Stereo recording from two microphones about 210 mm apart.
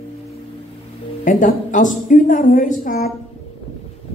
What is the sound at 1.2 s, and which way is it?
A woman's voice, 40° left (ahead or behind).